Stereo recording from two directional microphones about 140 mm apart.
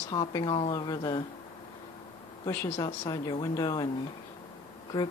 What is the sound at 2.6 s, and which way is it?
Speech, 40° left (ahead or behind).